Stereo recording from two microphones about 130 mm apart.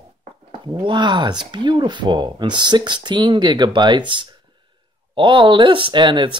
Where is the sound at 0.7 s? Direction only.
35° right (ahead or behind).